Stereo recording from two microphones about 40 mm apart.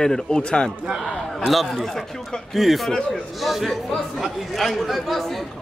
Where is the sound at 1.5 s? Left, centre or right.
Centre.